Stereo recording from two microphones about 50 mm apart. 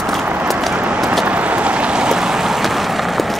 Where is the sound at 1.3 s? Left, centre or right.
Right; by 2.6 s centre.